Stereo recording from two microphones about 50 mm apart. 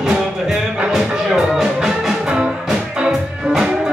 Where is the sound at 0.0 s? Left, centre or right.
Centre.